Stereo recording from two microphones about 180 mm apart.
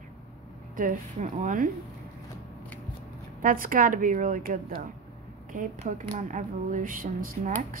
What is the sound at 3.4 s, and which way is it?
Speech, 50° right (ahead or behind).